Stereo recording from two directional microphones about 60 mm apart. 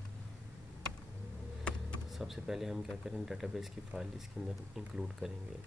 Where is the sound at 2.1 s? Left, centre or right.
Centre.